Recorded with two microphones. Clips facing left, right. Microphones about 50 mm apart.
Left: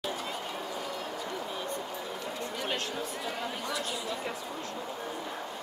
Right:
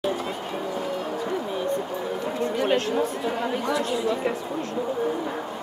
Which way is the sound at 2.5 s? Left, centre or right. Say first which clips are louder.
Right 12 dB; right.